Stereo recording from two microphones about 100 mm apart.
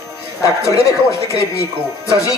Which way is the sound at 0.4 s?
30° left (ahead or behind).